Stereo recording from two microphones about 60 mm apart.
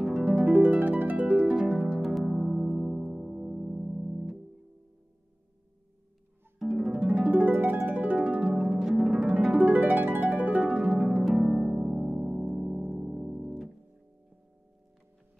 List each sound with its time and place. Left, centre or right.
0.0 s harp: centre
0.5 s harp: right
1.6 s music: centre
6.8 s harp: centre
8.5 s harp: centre
9.7 s harp: right; by 13.5 s centre